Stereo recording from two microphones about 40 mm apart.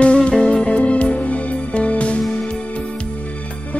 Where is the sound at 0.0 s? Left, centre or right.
Left.